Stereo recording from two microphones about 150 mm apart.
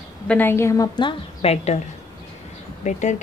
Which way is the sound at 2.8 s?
55° left (ahead or behind).